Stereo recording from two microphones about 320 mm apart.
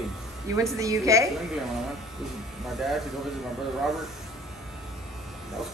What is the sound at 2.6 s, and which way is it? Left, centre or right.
Speech, centre.